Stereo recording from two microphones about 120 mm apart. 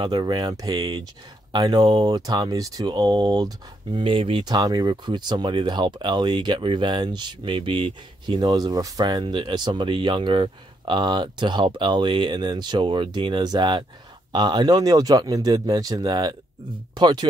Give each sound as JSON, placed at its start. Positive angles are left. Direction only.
{"t": 0.0, "sound": "speech", "side_deg": -40}
{"t": 4.0, "sound": "speech", "side_deg": -50}